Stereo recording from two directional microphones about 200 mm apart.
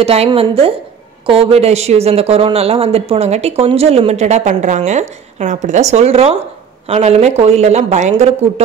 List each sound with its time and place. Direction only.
0.0 s a woman's voice: 30° right (ahead or behind)